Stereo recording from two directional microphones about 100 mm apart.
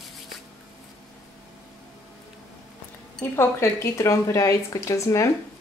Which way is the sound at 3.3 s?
25° left (ahead or behind).